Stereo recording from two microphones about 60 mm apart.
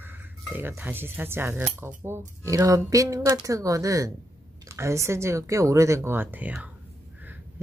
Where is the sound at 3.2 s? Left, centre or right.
Right.